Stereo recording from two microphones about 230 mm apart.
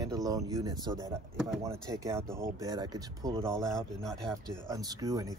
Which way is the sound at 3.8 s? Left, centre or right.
Centre.